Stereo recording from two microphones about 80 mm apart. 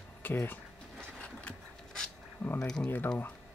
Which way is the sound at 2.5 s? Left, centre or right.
Centre.